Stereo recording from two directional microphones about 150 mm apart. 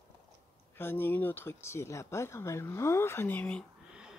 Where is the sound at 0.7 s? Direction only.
15° left (ahead or behind).